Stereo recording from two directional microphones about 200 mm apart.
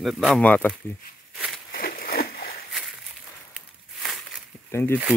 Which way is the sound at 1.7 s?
45° left (ahead or behind).